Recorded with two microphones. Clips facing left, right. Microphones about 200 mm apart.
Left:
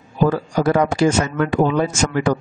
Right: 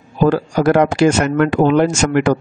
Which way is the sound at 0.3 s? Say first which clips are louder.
Right 6 dB; 75° right (ahead or behind).